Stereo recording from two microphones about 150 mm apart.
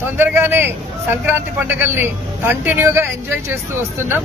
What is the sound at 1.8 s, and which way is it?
Speech, 15° right (ahead or behind).